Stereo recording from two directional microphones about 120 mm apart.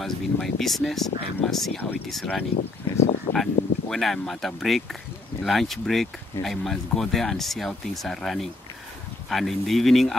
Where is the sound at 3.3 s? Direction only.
40° left (ahead or behind).